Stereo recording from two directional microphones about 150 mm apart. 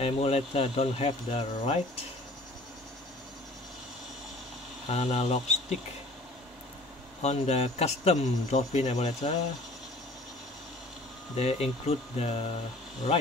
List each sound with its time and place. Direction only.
0.0 s speech: 40° left (ahead or behind)
4.8 s speech: 45° left (ahead or behind)
7.2 s speech: 45° left (ahead or behind)
11.3 s speech: 45° left (ahead or behind)